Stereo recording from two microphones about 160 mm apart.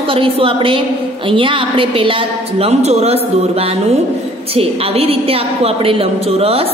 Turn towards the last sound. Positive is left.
turn(degrees=-40)  # may be behind; listen again after turning